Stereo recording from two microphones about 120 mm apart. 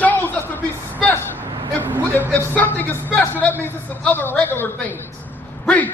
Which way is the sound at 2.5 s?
15° left (ahead or behind).